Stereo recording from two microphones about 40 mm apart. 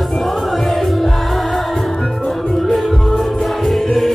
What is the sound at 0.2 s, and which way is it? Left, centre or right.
Music, centre.